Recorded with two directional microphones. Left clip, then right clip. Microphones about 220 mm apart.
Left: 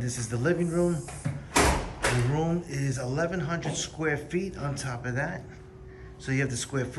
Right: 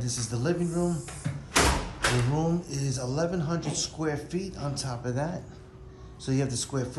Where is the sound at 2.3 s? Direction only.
15° right (ahead or behind).